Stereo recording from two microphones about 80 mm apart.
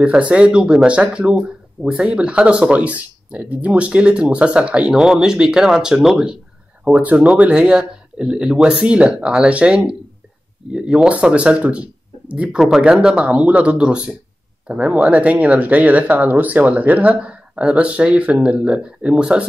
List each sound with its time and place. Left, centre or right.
0.0 s speech: centre
6.8 s speech: centre